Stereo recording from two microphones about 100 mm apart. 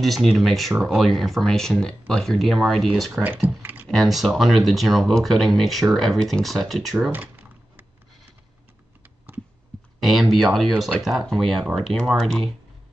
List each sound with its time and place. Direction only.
0.0 s speech: centre (ahead or behind)
3.2 s speech: 15° right (ahead or behind)
3.9 s speech: centre (ahead or behind)
7.1 s typing: 20° right (ahead or behind)
9.9 s a sound: centre (ahead or behind)
10.3 s speech: centre (ahead or behind)